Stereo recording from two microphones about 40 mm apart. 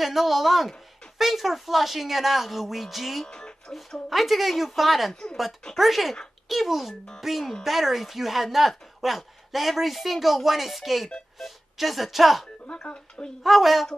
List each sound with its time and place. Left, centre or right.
0.0 s speech: centre
3.3 s music: centre
4.1 s speech: centre
12.8 s speech: left
13.4 s speech: centre